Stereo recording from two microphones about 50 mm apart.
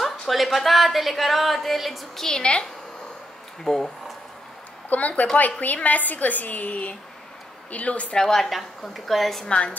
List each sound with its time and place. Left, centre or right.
0.0 s speech: centre
3.6 s speech: centre
4.8 s a woman's voice: left
8.2 s speech: centre
9.5 s speech: left